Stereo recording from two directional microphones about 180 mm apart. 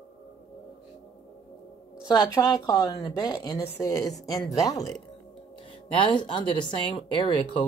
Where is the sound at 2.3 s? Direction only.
20° left (ahead or behind).